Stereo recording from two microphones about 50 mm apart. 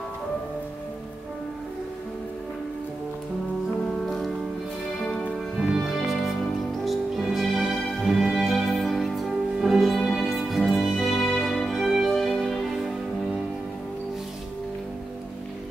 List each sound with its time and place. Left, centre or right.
5.6 s music: centre
11.6 s music: centre